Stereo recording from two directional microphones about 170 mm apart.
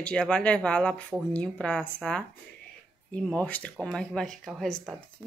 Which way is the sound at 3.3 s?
10° left (ahead or behind).